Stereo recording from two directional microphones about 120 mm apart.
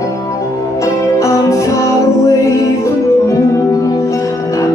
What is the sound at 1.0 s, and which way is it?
Music, 25° left (ahead or behind).